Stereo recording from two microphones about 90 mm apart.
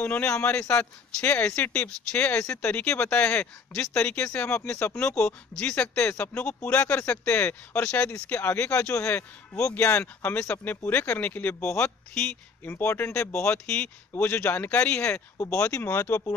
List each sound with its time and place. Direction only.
0.0 s a man's voice: 20° left (ahead or behind)
4.4 s a man's voice: 25° left (ahead or behind)
4.6 s a man's voice: 15° left (ahead or behind)
12.6 s a man's voice: 25° left (ahead or behind)
15.3 s speech: 35° left (ahead or behind)
15.6 s a man's voice: 25° left (ahead or behind)